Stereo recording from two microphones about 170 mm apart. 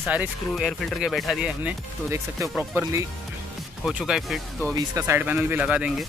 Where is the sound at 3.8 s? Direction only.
Centre (ahead or behind).